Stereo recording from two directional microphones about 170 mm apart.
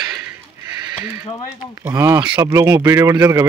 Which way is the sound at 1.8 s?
15° right (ahead or behind).